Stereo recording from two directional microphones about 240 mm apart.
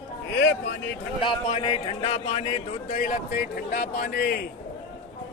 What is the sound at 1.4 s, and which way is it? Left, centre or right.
A man's voice, left.